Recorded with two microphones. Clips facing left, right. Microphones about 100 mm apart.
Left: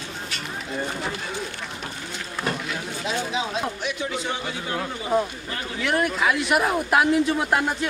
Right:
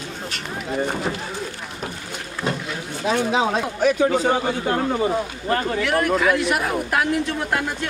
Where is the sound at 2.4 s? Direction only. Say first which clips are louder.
Right 3 dB; 25° right (ahead or behind).